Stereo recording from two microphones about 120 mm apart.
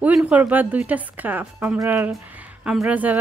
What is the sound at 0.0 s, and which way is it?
A woman's voice, 10° right (ahead or behind).